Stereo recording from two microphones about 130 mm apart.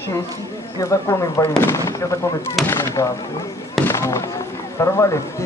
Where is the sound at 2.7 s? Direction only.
20° left (ahead or behind).